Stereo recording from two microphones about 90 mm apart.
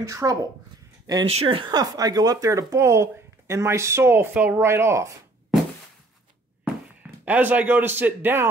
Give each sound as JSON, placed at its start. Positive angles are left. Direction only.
{"t": 0.0, "sound": "speech", "side_deg": -40}
{"t": 1.2, "sound": "speech", "side_deg": -85}
{"t": 1.7, "sound": "speech", "side_deg": -45}
{"t": 7.2, "sound": "a man's voice", "side_deg": -20}